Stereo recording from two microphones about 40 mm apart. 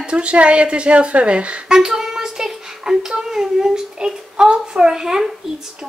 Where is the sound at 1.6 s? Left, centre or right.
Centre.